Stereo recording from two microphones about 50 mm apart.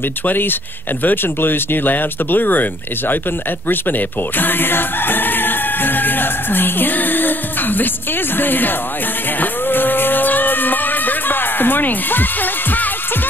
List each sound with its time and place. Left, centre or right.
0.2 s speech: left
4.4 s music: left
8.4 s speech: left
9.4 s music: left